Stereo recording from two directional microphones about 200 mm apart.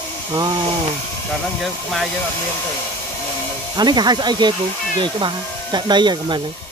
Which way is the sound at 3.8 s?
20° right (ahead or behind).